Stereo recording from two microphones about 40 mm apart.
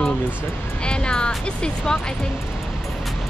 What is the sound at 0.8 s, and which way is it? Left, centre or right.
Speech, left.